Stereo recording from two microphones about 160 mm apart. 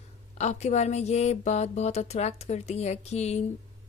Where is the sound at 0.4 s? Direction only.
45° left (ahead or behind).